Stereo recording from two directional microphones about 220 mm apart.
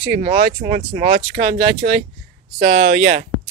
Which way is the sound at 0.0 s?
45° right (ahead or behind).